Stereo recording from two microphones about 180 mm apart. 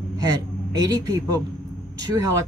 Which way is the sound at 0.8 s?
20° right (ahead or behind).